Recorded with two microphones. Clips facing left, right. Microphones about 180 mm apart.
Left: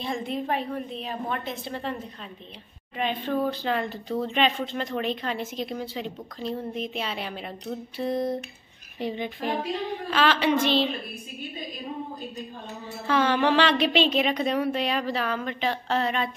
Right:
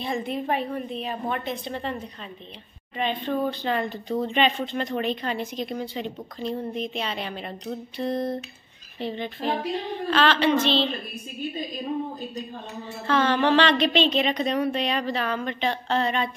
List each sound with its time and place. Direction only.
0.0 s speech: centre (ahead or behind)
3.0 s a woman's voice: 5° left (ahead or behind)
13.0 s a woman's voice: 10° left (ahead or behind)